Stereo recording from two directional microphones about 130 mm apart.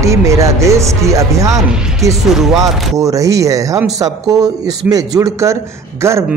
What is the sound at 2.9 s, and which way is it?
Speech, 25° right (ahead or behind).